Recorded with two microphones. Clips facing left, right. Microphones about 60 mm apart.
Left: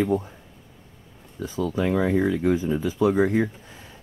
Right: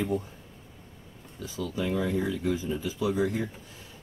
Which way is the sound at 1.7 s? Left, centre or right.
Left.